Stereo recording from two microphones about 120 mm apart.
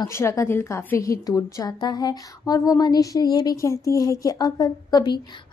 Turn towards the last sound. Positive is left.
turn(degrees=30)  # may be behind; listen again after turning